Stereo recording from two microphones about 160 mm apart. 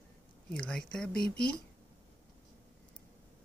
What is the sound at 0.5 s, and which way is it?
Speech, 5° left (ahead or behind).